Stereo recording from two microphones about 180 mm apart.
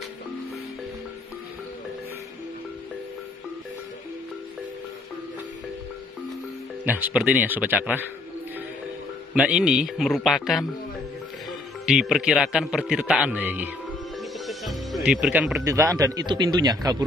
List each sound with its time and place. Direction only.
6.8 s speech: 10° right (ahead or behind)
9.3 s a man's voice: 5° right (ahead or behind)
11.8 s a man's voice: centre (ahead or behind)
14.4 s music: centre (ahead or behind)
15.7 s speech: 20° right (ahead or behind)